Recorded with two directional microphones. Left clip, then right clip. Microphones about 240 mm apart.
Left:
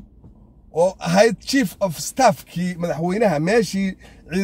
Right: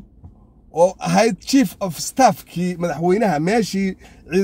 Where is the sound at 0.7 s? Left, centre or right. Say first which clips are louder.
Right 2 dB; centre.